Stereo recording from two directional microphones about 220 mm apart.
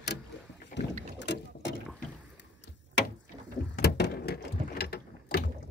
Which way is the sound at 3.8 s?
45° left (ahead or behind).